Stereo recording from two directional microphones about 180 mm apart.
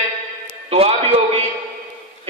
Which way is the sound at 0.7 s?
35° right (ahead or behind).